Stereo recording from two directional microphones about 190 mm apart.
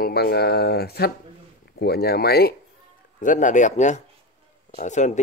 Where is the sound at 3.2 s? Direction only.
40° left (ahead or behind).